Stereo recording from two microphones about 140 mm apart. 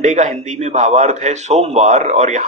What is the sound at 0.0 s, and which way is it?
A man's voice, 55° right (ahead or behind).